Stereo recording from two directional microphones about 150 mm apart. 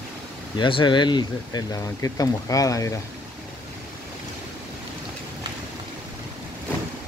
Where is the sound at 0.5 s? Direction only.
35° left (ahead or behind).